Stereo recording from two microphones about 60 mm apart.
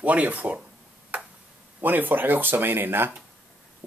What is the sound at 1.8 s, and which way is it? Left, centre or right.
Speech, right.